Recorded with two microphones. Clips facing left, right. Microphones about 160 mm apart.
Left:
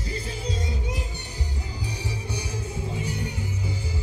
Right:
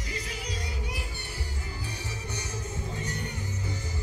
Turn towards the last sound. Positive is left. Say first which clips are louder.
# left 4 dB
turn(degrees=10)  # may be behind; listen again after turning